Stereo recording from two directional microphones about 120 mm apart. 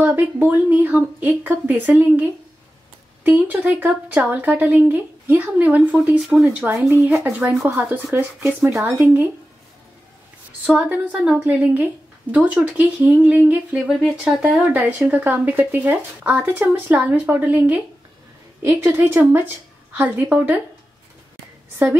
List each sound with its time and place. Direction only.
0.0 s speech: 15° right (ahead or behind)
3.3 s speech: 15° right (ahead or behind)
10.6 s speech: 10° right (ahead or behind)